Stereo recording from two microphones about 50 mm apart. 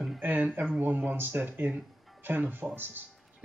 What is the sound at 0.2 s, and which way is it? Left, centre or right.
Speech, right.